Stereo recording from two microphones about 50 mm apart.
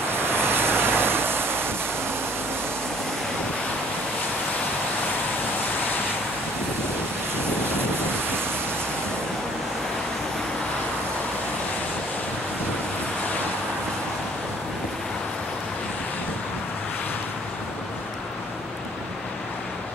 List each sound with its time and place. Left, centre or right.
0.2 s waves: right